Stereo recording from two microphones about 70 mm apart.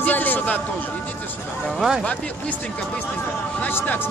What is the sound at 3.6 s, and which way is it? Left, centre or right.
Speech, left.